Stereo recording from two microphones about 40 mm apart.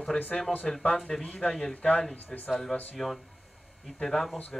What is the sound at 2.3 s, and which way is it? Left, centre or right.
Speech, centre.